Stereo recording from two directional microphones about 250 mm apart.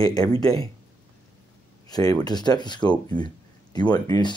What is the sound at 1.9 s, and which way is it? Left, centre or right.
Speech, centre.